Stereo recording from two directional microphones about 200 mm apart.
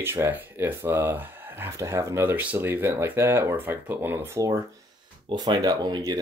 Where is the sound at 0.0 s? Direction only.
10° right (ahead or behind).